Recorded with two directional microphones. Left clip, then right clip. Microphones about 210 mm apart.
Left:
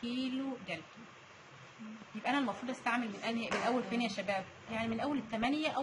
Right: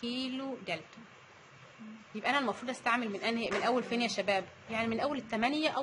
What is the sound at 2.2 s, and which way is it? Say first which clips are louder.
A woman's voice: right 3 dB; 55° right (ahead or behind).